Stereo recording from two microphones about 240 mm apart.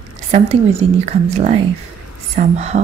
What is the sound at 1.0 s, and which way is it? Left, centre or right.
Speech, right.